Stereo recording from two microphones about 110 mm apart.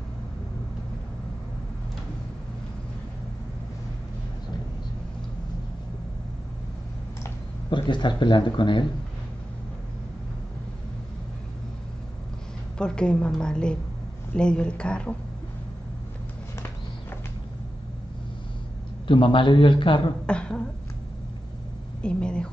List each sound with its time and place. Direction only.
7.7 s a man's voice: 45° left (ahead or behind)
12.7 s a woman's voice: 10° left (ahead or behind)
19.0 s a man's voice: 50° left (ahead or behind)
20.2 s a woman's voice: 10° left (ahead or behind)
22.0 s a woman's voice: 10° left (ahead or behind)